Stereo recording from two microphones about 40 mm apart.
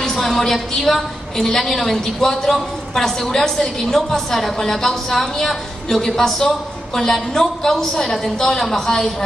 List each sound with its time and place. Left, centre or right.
0.0 s a woman's voice: centre